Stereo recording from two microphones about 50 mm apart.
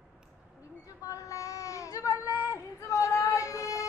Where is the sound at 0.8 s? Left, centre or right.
Left.